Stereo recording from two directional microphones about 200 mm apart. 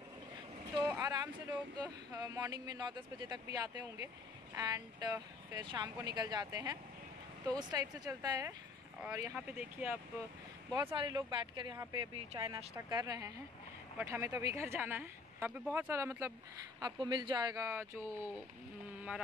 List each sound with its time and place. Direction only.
0.8 s vehicle: 15° right (ahead or behind)
1.8 s speech: 20° right (ahead or behind)